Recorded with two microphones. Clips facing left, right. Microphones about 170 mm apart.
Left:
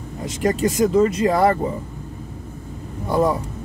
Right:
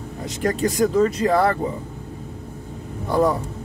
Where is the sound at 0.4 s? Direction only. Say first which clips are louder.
Left 1 dB; 20° left (ahead or behind).